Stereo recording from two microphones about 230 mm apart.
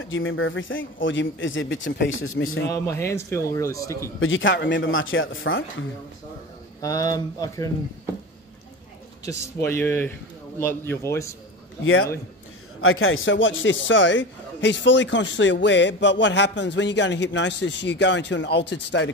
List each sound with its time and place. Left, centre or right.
0.1 s a man's voice: left
2.7 s speech: centre
4.2 s a man's voice: left
6.8 s speech: centre
9.2 s speech: centre
11.8 s a man's voice: left